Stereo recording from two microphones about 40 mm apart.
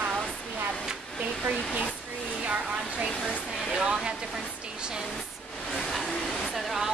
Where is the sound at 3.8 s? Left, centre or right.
Centre.